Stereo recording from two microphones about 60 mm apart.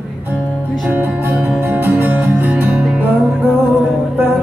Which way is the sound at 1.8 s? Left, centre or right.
Right.